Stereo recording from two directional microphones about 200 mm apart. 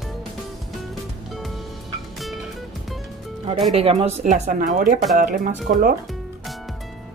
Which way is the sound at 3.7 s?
30° right (ahead or behind).